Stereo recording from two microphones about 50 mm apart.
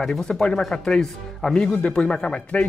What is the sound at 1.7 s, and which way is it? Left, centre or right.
Speech, left.